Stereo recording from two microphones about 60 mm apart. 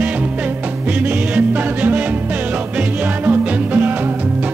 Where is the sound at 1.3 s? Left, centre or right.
Right.